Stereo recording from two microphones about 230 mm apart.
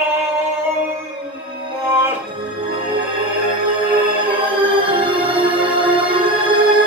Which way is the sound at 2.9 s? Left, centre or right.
Right.